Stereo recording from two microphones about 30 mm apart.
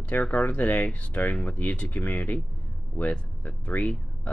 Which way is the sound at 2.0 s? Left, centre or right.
Left.